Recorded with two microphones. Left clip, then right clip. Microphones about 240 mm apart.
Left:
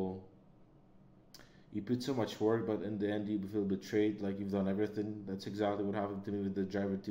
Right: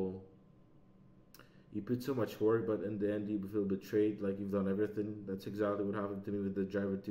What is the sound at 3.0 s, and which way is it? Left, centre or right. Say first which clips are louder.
A man's voice: even; left.